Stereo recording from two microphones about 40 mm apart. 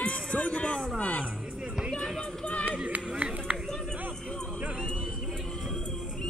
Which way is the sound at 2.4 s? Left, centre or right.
Left.